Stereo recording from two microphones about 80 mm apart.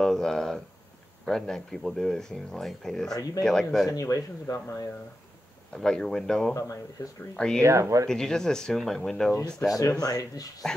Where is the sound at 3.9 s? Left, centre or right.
Left.